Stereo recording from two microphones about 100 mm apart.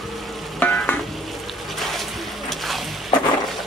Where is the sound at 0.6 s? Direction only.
15° left (ahead or behind).